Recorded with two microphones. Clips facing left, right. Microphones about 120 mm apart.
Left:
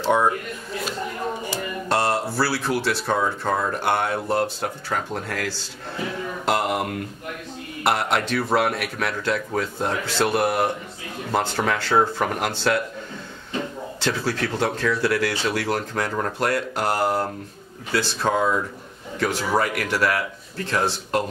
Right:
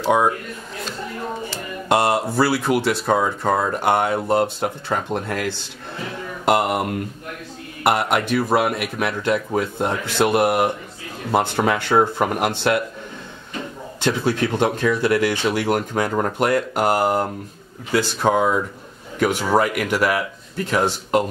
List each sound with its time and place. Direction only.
0.0 s speech: 10° right (ahead or behind)
1.9 s speech: 15° right (ahead or behind)
14.0 s speech: 15° right (ahead or behind)
20.2 s speech: 5° right (ahead or behind)